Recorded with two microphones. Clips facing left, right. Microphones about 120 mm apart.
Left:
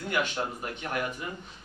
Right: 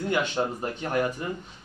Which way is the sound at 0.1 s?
30° right (ahead or behind).